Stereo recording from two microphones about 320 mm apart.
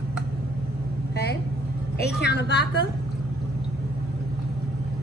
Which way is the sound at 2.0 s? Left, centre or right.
Left.